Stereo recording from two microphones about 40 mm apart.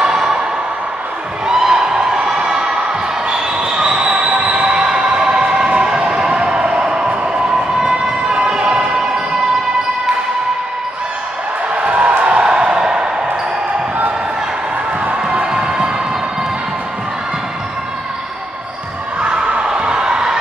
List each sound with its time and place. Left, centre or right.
0.0 s a sound: centre
1.5 s a sound: centre
2.1 s basketball bounce: right
5.0 s music: right
7.9 s emergency vehicle: right
11.7 s music: right
12.4 s music: right
15.3 s music: right
19.2 s a sound: right